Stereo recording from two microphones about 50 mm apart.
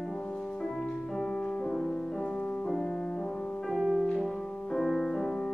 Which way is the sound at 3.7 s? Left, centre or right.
Centre.